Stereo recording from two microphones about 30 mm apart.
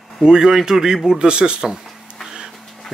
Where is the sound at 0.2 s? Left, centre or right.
Right.